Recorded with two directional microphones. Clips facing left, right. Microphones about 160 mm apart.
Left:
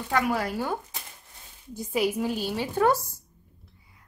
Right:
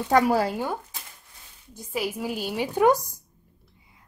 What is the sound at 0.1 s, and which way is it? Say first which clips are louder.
Speech: right 5 dB; 30° right (ahead or behind).